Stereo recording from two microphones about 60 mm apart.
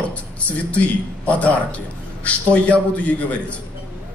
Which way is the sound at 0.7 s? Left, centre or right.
Left.